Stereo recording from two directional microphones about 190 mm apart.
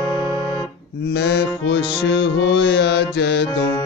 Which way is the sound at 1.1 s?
65° left (ahead or behind).